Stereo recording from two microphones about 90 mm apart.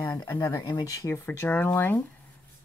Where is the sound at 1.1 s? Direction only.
25° left (ahead or behind).